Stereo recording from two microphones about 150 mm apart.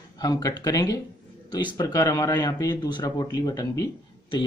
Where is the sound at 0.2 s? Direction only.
25° left (ahead or behind).